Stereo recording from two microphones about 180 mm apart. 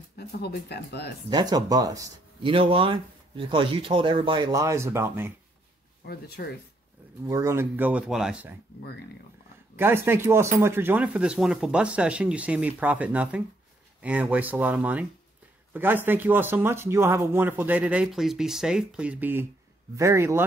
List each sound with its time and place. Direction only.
0.2 s speech: 65° left (ahead or behind)
1.3 s speech: 20° right (ahead or behind)
2.5 s speech: 30° right (ahead or behind); by 5.3 s 15° right (ahead or behind)
6.0 s speech: 60° left (ahead or behind)
7.2 s speech: 15° right (ahead or behind)
9.8 s speech: 10° right (ahead or behind)